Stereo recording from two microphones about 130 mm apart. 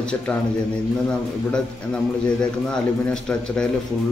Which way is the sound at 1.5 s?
5° left (ahead or behind).